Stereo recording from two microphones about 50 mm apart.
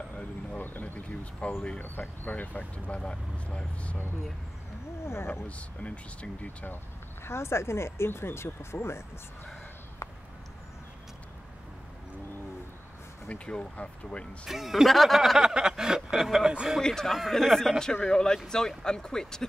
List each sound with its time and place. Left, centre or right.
0.2 s speech: left
5.0 s speech: left
5.5 s speech: left
7.2 s speech: left
8.7 s speech: left
10.0 s a sound: left
13.3 s speech: centre
14.4 s speech: centre
16.8 s speech: centre
17.1 s speech: centre